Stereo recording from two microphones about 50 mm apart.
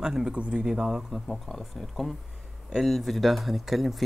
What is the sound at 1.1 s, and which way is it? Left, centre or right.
Speech, centre.